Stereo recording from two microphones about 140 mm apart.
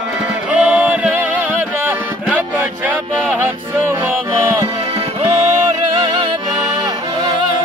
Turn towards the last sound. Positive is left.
turn(degrees=-35)  # may be behind; listen again after turning